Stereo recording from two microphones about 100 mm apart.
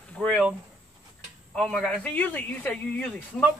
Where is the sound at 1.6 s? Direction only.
5° left (ahead or behind).